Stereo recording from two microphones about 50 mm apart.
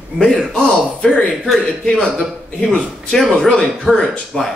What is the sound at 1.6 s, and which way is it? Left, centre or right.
Speech, centre.